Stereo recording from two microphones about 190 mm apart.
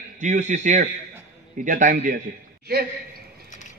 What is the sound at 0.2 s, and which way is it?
A man's voice, 40° right (ahead or behind).